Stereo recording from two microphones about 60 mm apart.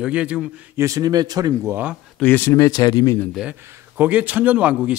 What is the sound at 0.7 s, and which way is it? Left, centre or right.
Speech, right.